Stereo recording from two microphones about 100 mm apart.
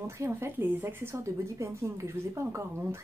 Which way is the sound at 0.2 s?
25° right (ahead or behind).